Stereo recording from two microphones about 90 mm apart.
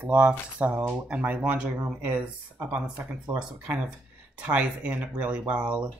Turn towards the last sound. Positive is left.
turn(degrees=-10)  # may be behind; listen again after turning